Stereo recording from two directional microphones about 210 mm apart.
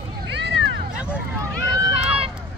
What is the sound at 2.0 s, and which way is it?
Run, 25° right (ahead or behind).